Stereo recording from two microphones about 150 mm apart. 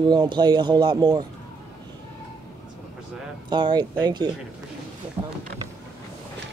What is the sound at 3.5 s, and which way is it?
Speech, 30° right (ahead or behind).